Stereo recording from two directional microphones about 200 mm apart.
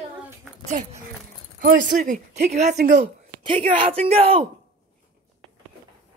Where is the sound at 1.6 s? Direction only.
50° right (ahead or behind).